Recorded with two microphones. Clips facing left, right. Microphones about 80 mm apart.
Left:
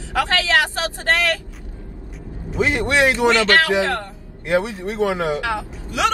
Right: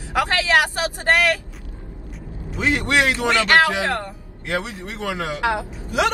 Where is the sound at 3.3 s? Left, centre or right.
Right.